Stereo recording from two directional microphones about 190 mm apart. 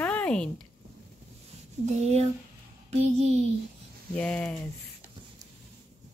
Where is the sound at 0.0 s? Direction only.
5° left (ahead or behind).